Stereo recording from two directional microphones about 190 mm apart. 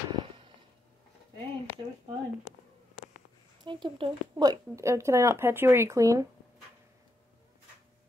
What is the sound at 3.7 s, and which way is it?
Speech, 25° right (ahead or behind).